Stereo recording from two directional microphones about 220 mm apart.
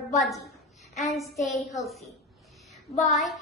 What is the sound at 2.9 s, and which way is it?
Child singing, 35° left (ahead or behind).